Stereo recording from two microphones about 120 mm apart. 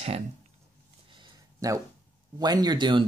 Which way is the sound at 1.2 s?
30° right (ahead or behind).